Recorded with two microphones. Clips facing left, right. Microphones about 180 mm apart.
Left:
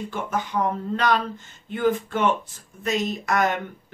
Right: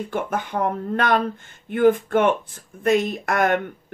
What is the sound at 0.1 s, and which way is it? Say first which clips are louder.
Speech: right 1 dB; 55° right (ahead or behind).